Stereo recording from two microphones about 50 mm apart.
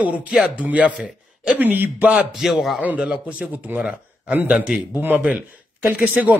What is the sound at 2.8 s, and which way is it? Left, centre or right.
A man's voice, right.